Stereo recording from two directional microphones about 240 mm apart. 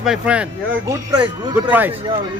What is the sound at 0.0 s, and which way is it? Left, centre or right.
A man's voice, centre.